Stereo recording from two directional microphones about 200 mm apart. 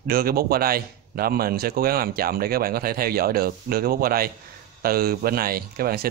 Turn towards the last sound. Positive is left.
turn(degrees=-50)  # may be behind; listen again after turning